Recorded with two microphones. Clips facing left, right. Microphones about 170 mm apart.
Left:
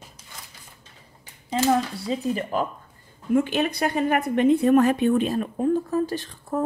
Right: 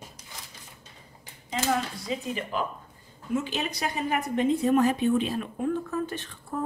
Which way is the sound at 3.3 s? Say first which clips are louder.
Left 8 dB; 55° left (ahead or behind).